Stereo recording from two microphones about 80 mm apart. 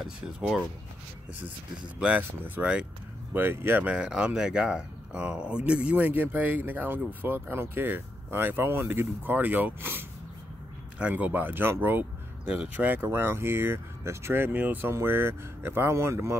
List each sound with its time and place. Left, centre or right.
0.0 s speech: centre
1.4 s speech: centre
3.3 s speech: right
3.8 s speech: centre
12.4 s speech: centre
12.8 s speech: right